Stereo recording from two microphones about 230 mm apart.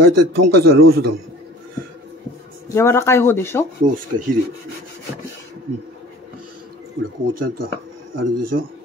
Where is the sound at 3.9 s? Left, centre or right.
Right.